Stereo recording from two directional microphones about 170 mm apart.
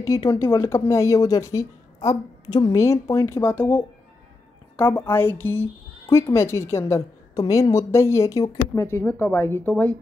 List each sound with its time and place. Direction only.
0.0 s a woman's voice: 20° left (ahead or behind)